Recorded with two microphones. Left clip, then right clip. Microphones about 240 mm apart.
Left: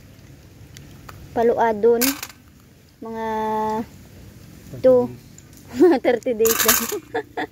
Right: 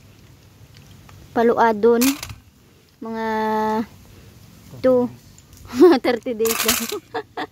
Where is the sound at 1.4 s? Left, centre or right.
Right.